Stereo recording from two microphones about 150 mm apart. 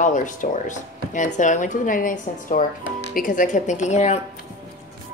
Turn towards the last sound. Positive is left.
turn(degrees=50)  # may be behind; listen again after turning